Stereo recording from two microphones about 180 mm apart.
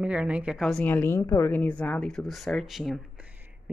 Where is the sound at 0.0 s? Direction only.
5° right (ahead or behind).